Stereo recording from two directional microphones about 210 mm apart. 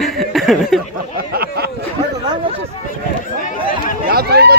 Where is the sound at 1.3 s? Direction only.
50° right (ahead or behind).